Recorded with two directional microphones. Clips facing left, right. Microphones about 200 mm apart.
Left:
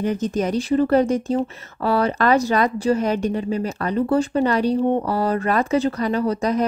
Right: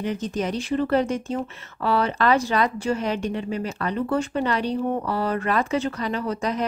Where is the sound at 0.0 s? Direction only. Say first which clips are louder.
Left 4 dB; 45° left (ahead or behind).